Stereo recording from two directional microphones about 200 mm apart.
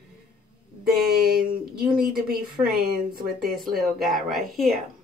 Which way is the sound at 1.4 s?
5° right (ahead or behind).